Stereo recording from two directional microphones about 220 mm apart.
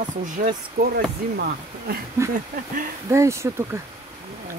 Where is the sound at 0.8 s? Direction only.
35° right (ahead or behind).